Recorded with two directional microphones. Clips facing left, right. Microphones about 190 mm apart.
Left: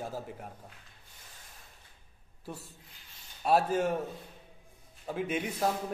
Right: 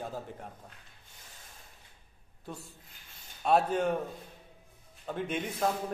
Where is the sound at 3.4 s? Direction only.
5° left (ahead or behind).